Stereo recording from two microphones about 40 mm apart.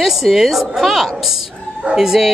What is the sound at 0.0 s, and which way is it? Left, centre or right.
A woman's voice, centre.